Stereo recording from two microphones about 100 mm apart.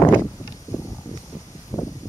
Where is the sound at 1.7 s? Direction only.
30° left (ahead or behind).